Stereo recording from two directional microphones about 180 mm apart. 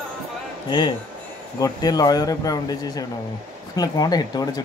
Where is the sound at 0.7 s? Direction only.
25° left (ahead or behind).